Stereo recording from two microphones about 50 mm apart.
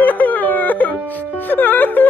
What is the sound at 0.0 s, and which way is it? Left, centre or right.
Music, left.